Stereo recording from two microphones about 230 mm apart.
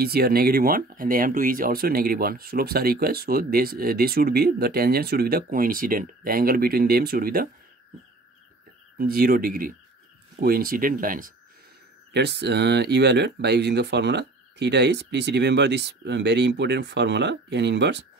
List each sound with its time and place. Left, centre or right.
0.0 s speech: right
8.9 s speech: right